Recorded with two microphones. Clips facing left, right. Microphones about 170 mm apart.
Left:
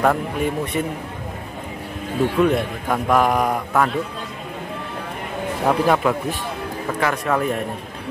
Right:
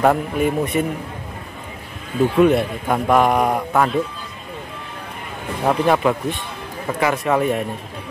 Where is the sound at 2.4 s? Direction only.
5° right (ahead or behind).